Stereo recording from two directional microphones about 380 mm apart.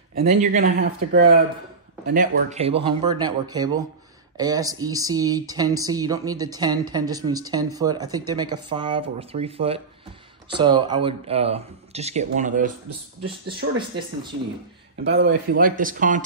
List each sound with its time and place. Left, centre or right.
0.1 s speech: right
13.7 s speech: centre
15.0 s speech: right